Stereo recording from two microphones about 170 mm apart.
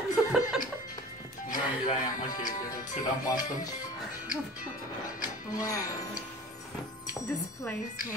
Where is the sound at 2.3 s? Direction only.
55° left (ahead or behind).